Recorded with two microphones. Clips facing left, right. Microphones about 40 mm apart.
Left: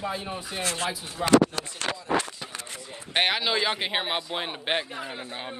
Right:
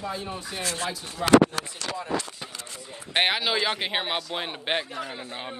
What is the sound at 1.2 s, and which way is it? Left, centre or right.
Speech, centre.